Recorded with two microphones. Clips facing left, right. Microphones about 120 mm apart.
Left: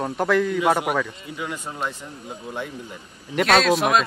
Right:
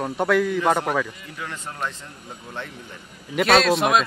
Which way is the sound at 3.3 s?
Centre (ahead or behind).